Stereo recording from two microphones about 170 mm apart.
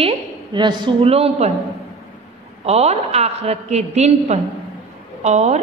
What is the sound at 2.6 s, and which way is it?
A woman's voice, 40° right (ahead or behind).